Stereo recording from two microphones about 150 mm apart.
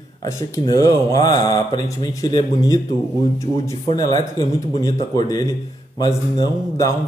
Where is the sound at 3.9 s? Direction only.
25° left (ahead or behind).